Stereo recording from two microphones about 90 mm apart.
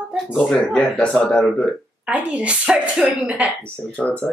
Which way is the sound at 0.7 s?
5° left (ahead or behind).